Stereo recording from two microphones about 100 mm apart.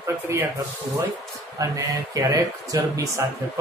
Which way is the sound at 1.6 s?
35° right (ahead or behind).